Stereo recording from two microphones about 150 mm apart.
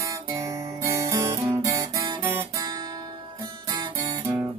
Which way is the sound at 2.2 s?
15° right (ahead or behind).